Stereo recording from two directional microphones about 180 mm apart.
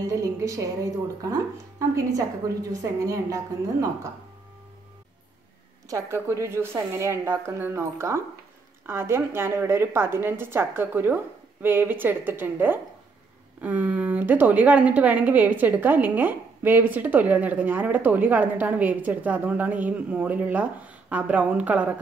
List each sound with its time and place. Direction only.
0.0 s a woman's voice: 20° right (ahead or behind)
5.9 s a woman's voice: 15° right (ahead or behind)